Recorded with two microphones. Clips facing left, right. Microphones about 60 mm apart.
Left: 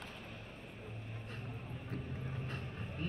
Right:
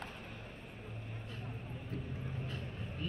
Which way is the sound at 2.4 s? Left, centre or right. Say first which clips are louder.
Even; left.